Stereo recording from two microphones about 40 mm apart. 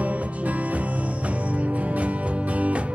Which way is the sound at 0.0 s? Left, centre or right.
Right.